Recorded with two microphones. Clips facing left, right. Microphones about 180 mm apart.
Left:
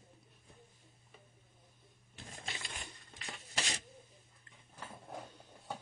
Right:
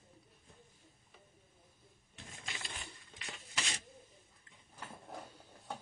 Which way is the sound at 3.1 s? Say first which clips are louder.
Left 2 dB; 40° left (ahead or behind).